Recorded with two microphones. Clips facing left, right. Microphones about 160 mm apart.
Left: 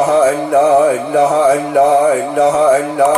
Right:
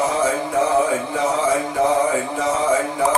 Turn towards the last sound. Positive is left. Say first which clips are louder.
# left 8 dB
turn(degrees=70)  # may be behind; listen again after turning